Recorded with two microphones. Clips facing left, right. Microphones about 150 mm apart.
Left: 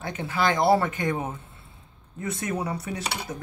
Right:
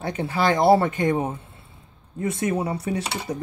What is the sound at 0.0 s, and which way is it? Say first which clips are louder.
Speech: right 3 dB; 35° right (ahead or behind).